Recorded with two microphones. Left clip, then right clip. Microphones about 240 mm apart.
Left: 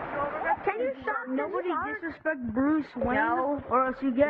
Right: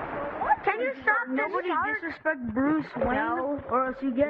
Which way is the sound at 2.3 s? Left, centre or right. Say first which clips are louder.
Right 1 dB; centre.